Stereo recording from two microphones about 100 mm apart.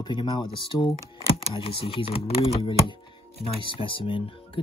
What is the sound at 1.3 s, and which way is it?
Speech, 65° left (ahead or behind).